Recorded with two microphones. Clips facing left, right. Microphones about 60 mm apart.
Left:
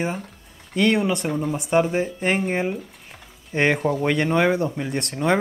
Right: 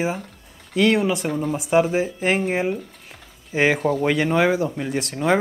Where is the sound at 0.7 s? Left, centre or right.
Centre.